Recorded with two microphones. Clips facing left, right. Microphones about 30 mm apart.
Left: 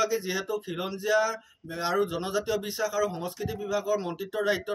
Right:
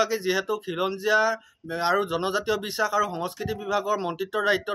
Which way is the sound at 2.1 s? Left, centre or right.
Right.